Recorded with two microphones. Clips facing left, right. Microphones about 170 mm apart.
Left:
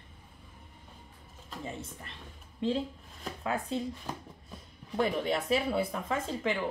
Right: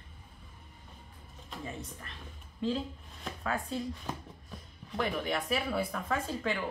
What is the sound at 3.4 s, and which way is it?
Speech, 20° left (ahead or behind).